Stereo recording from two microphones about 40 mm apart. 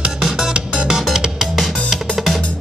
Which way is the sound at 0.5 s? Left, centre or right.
Right.